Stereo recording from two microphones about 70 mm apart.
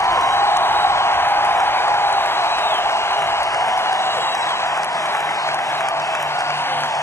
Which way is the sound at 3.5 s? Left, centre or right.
Left.